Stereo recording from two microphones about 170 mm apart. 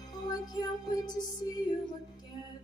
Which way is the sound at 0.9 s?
25° left (ahead or behind).